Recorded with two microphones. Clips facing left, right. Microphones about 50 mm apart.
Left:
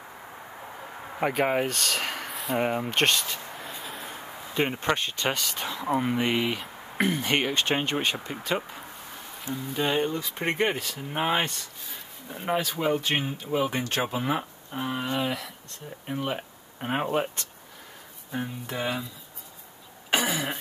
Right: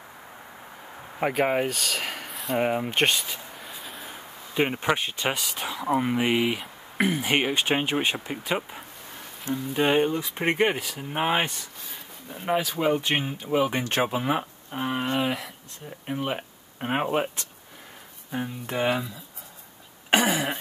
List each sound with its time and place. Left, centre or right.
1.2 s speech: centre
9.5 s speech: right
9.8 s speech: centre
18.7 s speech: right
20.1 s throat clearing: right